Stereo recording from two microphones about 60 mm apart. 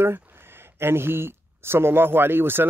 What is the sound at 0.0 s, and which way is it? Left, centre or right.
Speech, right.